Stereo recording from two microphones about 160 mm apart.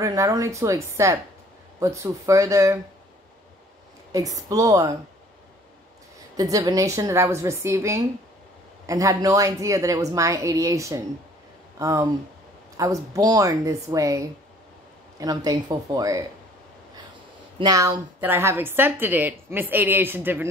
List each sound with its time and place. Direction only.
0.0 s a woman's voice: 20° right (ahead or behind)
4.1 s a woman's voice: 20° right (ahead or behind)
6.3 s a woman's voice: 20° right (ahead or behind)
17.6 s a woman's voice: 20° right (ahead or behind)